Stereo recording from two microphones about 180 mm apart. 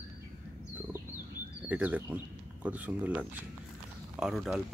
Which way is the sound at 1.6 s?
10° right (ahead or behind).